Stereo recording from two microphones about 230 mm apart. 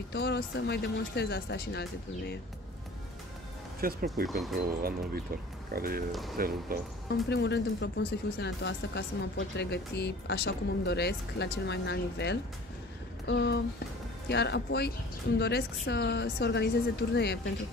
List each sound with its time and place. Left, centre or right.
0.1 s speech: left
3.8 s speech: right
4.3 s speech: centre
4.6 s speech: right
7.1 s speech: left